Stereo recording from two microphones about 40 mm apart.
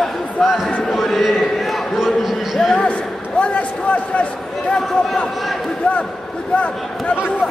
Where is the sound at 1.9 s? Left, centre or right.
Centre.